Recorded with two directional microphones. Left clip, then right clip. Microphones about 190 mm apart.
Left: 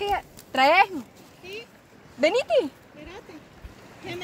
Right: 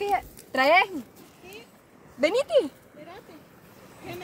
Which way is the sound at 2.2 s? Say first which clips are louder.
Left 1 dB; 15° left (ahead or behind).